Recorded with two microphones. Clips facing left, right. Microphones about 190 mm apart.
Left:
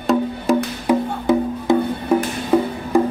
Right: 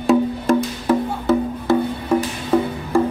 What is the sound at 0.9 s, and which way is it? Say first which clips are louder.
Music: left 1 dB; 15° left (ahead or behind).